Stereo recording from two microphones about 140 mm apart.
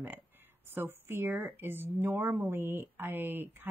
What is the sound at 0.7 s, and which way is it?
A woman's voice, 15° right (ahead or behind).